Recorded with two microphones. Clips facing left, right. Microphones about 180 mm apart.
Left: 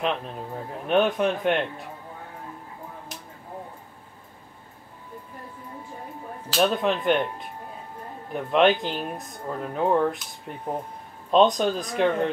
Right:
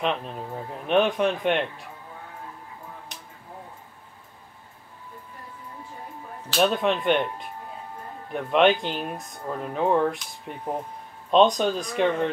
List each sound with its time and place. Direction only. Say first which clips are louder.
0.0 s speech: even; centre (ahead or behind)
6.5 s speech: even; centre (ahead or behind)